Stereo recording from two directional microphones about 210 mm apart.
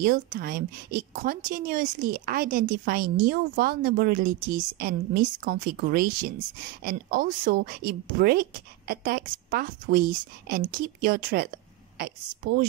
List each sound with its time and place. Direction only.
0.0 s a woman's voice: 40° right (ahead or behind)